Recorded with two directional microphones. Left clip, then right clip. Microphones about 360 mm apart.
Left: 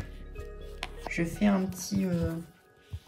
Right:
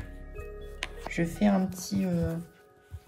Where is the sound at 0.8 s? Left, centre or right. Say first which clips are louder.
Right 2 dB; right.